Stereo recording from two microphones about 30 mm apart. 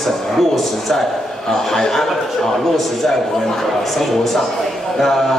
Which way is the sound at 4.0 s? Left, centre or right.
Centre.